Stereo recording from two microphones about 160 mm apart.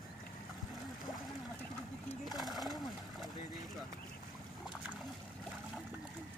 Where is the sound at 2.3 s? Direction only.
Centre (ahead or behind).